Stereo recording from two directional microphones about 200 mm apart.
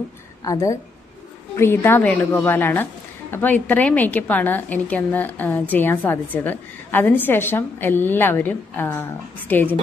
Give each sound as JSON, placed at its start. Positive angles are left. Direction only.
{"t": 0.5, "sound": "a woman's voice", "side_deg": 15}